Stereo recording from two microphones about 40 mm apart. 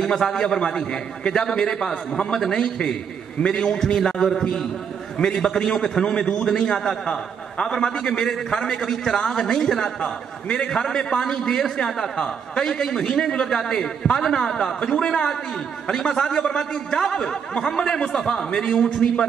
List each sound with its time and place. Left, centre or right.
0.0 s a man's voice: centre
9.9 s a man's voice: left